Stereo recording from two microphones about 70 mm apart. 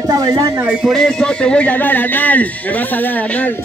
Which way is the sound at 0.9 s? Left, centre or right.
Centre.